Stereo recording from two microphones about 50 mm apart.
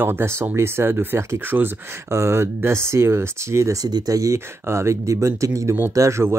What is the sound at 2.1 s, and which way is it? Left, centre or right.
Speech, right.